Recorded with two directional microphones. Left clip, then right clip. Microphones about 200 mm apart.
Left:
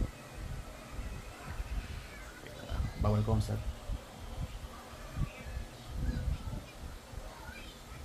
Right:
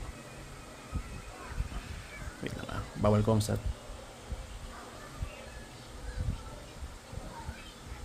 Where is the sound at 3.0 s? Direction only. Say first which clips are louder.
Right 7 dB; 65° right (ahead or behind).